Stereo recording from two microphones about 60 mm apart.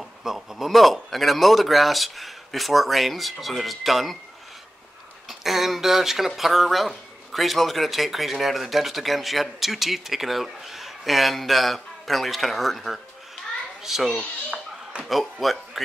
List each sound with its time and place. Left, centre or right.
0.0 s speech: centre
5.3 s speech: centre
14.5 s a sound: centre
15.4 s speech: centre